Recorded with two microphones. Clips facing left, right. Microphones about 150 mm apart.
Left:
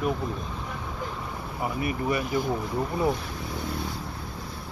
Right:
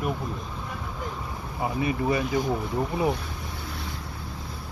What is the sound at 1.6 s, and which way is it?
Speech, 25° right (ahead or behind).